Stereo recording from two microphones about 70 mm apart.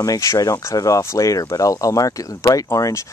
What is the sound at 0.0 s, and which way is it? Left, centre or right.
Speech, left.